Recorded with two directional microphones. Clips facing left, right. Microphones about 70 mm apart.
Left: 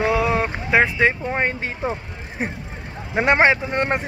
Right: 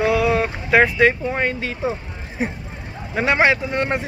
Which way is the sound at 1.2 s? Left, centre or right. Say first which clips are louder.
Right 1 dB; left.